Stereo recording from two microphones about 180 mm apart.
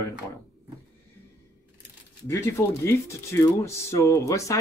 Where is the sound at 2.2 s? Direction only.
15° left (ahead or behind).